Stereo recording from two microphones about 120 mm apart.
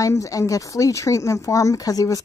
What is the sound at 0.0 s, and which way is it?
Speech, 30° left (ahead or behind).